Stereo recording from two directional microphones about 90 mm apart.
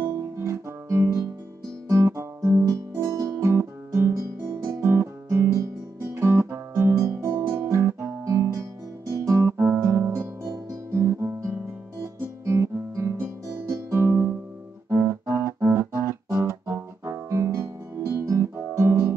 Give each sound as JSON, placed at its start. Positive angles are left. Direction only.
{"t": 0.0, "sound": "guitar", "side_deg": -30}
{"t": 13.6, "sound": "music", "side_deg": -30}